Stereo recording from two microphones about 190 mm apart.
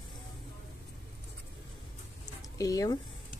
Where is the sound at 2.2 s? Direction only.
20° left (ahead or behind).